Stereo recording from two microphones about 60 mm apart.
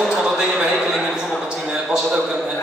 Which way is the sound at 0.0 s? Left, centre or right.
Centre.